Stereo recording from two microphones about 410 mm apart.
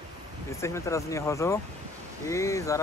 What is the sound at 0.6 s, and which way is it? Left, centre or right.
Speech, centre.